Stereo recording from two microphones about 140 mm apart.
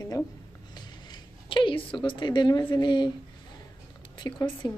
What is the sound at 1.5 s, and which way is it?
Speech, 35° left (ahead or behind).